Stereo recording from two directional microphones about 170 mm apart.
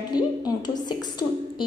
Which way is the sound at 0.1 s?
25° left (ahead or behind).